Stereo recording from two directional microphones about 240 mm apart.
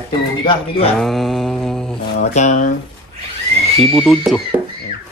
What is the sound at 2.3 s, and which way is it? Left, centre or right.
Chopping, left.